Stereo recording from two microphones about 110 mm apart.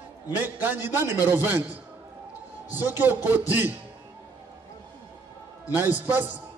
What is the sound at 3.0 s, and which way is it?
Speech, 20° right (ahead or behind).